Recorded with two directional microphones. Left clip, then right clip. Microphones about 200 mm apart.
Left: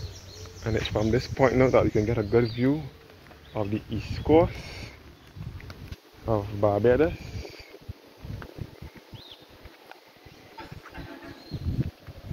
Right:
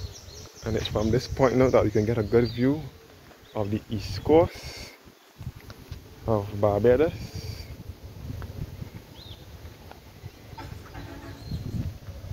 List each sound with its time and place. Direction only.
0.7 s speech: centre (ahead or behind)
1.0 s speech: 15° right (ahead or behind)
6.2 s speech: 20° right (ahead or behind)